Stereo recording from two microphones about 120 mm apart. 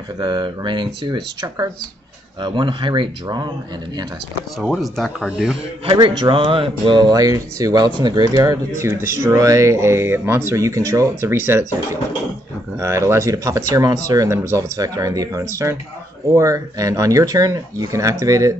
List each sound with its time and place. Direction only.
0.2 s speech: 40° right (ahead or behind)
4.6 s speech: centre (ahead or behind)
5.9 s speech: 40° right (ahead or behind)